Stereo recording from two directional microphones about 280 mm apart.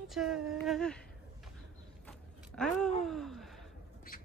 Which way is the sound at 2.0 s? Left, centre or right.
Centre.